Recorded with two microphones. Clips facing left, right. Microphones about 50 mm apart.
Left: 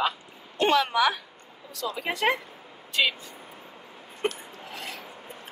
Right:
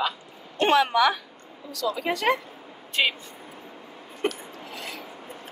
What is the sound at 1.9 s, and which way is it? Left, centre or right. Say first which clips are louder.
Speech: right 2 dB; centre.